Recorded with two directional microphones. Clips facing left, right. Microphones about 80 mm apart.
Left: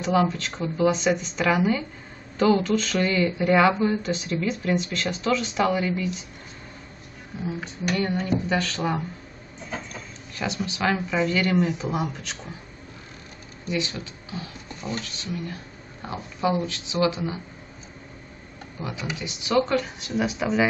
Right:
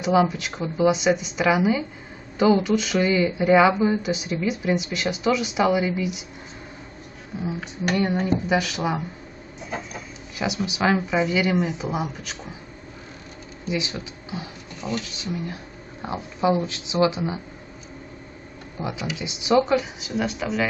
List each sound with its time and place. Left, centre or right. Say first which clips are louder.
0.0 s speech: right 2 dB; centre
7.3 s speech: right 2 dB; centre
13.7 s speech: right 1 dB; centre
18.8 s speech: right 3 dB; centre